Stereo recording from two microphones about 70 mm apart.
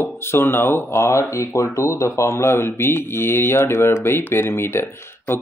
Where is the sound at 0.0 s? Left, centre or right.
Left.